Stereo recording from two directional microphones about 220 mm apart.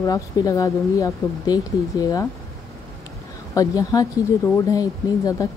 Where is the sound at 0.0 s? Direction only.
15° left (ahead or behind).